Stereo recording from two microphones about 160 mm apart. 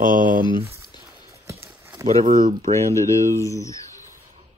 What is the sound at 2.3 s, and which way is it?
Speech, 50° right (ahead or behind).